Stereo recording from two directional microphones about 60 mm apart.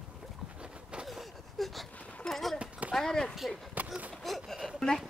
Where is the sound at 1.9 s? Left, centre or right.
Left.